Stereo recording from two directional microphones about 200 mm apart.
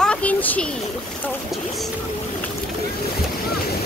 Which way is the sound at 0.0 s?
5° left (ahead or behind).